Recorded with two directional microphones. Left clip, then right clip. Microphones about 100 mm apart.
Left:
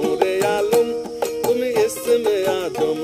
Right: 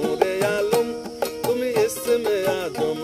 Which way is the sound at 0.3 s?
35° left (ahead or behind).